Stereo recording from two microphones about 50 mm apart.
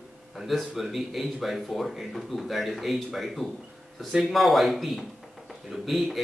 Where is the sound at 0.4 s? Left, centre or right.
Centre.